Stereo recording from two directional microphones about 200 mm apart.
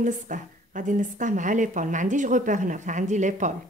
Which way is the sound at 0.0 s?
40° right (ahead or behind).